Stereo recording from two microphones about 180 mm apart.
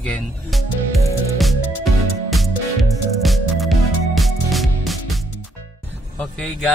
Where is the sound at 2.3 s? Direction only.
Centre (ahead or behind).